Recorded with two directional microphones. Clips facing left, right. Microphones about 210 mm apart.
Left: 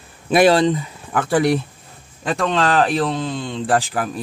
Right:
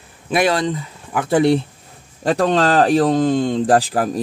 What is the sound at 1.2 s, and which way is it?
Speech, 25° right (ahead or behind).